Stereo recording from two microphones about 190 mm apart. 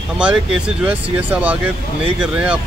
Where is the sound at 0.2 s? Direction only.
5° right (ahead or behind).